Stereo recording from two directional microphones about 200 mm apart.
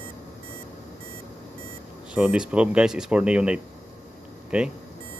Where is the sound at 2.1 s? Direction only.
5° right (ahead or behind).